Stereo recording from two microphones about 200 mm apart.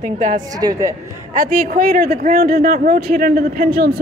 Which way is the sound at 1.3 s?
45° right (ahead or behind).